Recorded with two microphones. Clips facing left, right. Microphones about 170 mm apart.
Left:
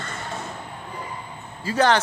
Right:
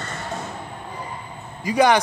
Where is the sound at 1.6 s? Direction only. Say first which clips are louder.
Right 3 dB; 15° right (ahead or behind).